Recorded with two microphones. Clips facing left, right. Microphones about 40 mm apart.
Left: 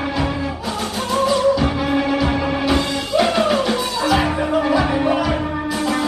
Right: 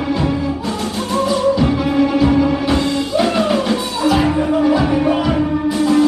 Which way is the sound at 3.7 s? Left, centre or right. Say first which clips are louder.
Right 2 dB; left.